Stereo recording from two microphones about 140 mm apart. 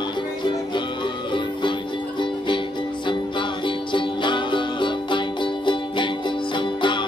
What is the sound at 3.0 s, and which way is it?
Music, 35° left (ahead or behind).